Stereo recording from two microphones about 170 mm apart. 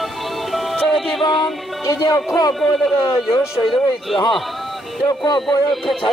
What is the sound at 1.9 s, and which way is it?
A man's voice, 20° left (ahead or behind).